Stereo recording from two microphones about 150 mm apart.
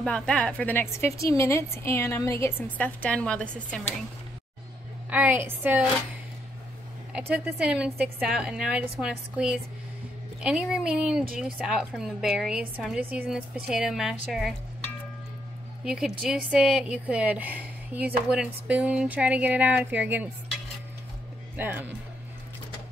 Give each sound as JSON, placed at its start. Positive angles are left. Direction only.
{"t": 0.0, "sound": "a woman's voice", "side_deg": 5}
{"t": 5.1, "sound": "speech", "side_deg": -10}
{"t": 7.1, "sound": "a woman's voice", "side_deg": -5}
{"t": 15.8, "sound": "speech", "side_deg": -5}
{"t": 21.5, "sound": "speech", "side_deg": -15}